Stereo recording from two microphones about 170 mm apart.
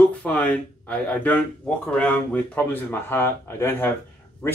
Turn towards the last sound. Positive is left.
turn(degrees=15)  # may be behind; listen again after turning